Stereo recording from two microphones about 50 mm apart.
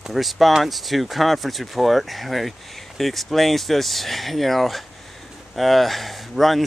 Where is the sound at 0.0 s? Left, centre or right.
Centre.